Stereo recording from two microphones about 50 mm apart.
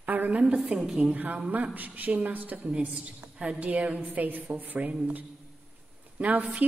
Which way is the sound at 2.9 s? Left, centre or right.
Right.